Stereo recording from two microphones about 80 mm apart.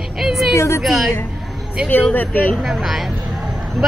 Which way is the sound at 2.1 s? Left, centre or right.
Left.